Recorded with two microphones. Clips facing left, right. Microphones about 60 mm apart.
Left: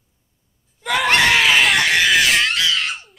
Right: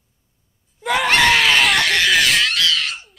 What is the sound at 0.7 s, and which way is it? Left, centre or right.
Screaming, centre.